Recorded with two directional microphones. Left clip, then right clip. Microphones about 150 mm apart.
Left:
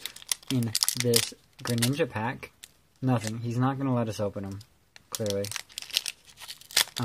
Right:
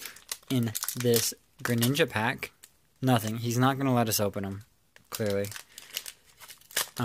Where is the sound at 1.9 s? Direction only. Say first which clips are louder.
Right 3 dB; 10° right (ahead or behind).